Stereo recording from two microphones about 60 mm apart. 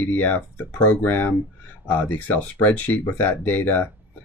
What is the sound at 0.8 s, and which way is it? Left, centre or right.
Speech, left.